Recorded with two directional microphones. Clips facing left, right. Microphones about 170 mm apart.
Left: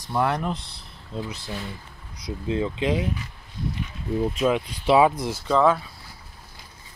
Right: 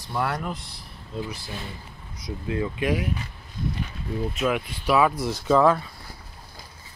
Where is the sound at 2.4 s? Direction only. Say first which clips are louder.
Left 2 dB; 25° left (ahead or behind).